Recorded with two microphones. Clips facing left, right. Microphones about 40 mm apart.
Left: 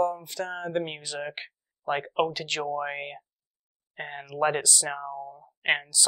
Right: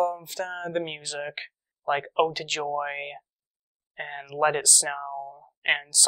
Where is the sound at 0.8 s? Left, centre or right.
Centre.